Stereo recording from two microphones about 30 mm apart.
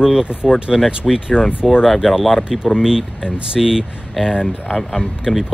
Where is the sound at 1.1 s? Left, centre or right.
Centre.